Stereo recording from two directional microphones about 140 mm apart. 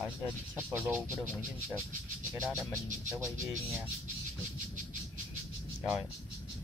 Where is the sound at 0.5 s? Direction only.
15° right (ahead or behind).